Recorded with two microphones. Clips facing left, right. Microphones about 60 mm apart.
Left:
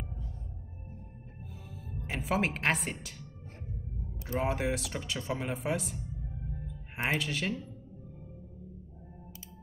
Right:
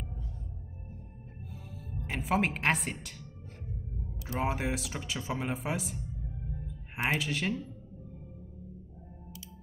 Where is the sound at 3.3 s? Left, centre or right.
Left.